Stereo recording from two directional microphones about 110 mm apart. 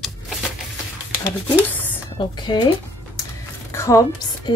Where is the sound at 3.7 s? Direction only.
25° left (ahead or behind).